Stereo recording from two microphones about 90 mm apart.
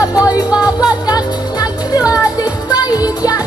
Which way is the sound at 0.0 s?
40° left (ahead or behind).